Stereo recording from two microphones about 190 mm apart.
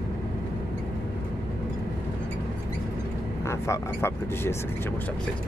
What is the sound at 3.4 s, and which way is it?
Speech, 15° left (ahead or behind).